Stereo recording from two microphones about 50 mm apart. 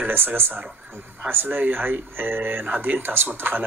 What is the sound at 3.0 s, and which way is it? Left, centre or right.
Speech, right.